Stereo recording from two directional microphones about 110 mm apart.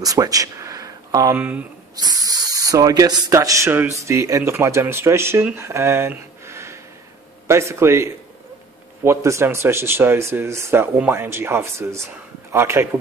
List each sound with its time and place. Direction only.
0.0 s a sound: 30° right (ahead or behind)
1.3 s speech: 15° right (ahead or behind)
2.0 s speech: 35° right (ahead or behind)